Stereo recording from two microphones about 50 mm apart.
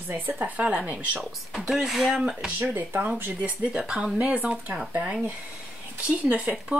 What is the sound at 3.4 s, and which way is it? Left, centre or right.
Speech, right.